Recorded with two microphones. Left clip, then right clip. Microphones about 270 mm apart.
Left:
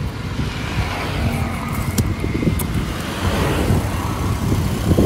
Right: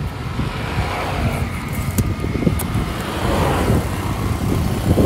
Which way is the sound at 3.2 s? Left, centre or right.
Right.